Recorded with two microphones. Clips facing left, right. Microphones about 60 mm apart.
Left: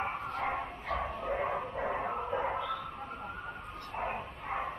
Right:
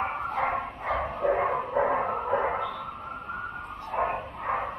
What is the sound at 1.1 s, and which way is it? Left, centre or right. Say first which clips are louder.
Bow-wow: right 8 dB; right.